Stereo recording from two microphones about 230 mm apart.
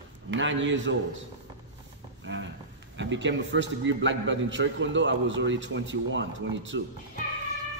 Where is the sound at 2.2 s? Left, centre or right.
Right.